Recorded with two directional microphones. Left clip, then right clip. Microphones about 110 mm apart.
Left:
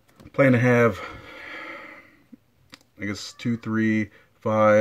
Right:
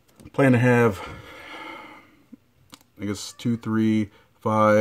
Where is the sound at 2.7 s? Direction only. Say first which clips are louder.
Even; 20° right (ahead or behind).